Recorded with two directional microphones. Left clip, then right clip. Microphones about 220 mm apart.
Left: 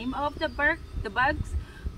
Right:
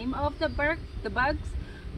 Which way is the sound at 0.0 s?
Centre (ahead or behind).